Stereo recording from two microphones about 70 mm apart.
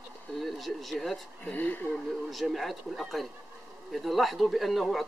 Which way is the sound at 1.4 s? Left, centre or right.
Left.